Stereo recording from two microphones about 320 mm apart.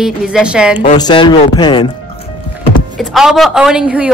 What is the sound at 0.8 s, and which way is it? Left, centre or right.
Speech, centre.